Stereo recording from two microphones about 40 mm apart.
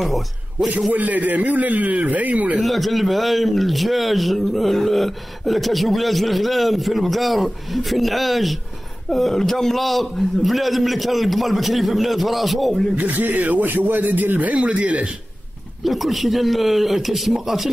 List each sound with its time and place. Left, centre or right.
0.0 s a man's voice: centre
0.9 s a man's voice: right
2.6 s speech: centre
12.9 s a man's voice: right
14.5 s speech: right
15.8 s speech: centre